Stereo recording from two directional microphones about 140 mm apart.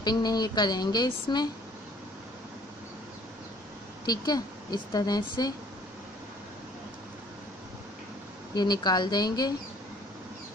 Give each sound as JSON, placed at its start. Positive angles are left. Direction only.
{"t": 0.0, "sound": "speech", "side_deg": 30}
{"t": 4.0, "sound": "speech", "side_deg": 30}
{"t": 8.5, "sound": "speech", "side_deg": 30}